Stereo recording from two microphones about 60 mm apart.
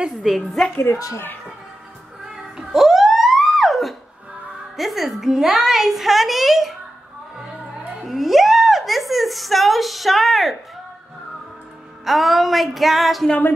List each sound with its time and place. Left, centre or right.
0.0 s a woman's voice: centre
0.9 s a child's voice: left
2.2 s a sound: centre
4.7 s a woman's voice: centre
8.0 s a sound: centre
12.0 s a woman's voice: centre